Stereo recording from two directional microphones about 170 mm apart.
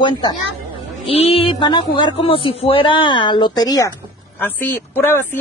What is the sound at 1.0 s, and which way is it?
Music, 35° left (ahead or behind).